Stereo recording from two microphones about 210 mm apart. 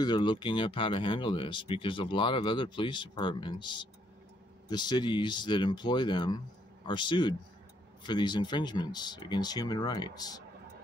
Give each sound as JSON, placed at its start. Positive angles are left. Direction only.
{"t": 0.0, "sound": "speech", "side_deg": 20}